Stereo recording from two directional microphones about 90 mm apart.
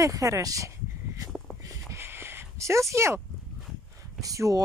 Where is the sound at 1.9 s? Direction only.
25° right (ahead or behind).